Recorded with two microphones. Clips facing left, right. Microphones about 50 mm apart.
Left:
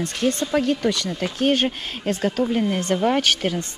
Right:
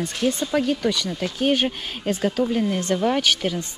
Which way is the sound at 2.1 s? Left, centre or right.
Centre.